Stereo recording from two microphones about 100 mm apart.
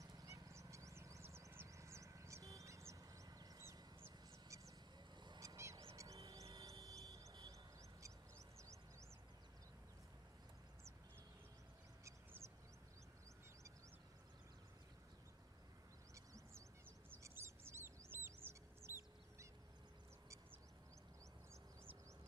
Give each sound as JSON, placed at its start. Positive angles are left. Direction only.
{"t": 0.0, "sound": "a sound", "side_deg": -35}
{"t": 5.4, "sound": "goose", "side_deg": -30}
{"t": 5.9, "sound": "music", "side_deg": -35}
{"t": 7.1, "sound": "a sound", "side_deg": -35}
{"t": 17.1, "sound": "bird", "side_deg": -25}
{"t": 18.1, "sound": "chicken", "side_deg": -25}